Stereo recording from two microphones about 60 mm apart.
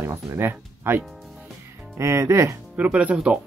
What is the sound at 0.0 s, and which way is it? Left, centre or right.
Speech, right.